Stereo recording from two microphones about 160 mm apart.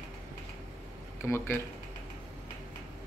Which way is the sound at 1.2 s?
15° left (ahead or behind).